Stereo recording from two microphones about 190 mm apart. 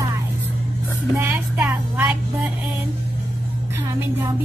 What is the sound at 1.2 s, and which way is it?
Music, 10° right (ahead or behind).